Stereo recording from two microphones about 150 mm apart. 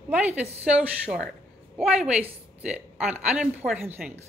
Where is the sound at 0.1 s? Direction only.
10° right (ahead or behind).